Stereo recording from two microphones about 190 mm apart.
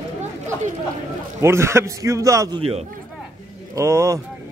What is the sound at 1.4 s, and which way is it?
A man's voice, 15° right (ahead or behind).